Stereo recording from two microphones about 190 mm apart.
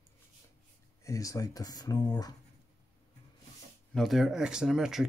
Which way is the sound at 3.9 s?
Centre (ahead or behind).